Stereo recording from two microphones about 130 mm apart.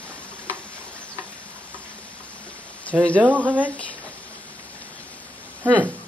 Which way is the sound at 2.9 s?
10° left (ahead or behind).